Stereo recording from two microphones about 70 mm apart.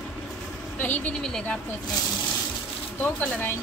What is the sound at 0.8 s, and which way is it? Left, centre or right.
Speech, left.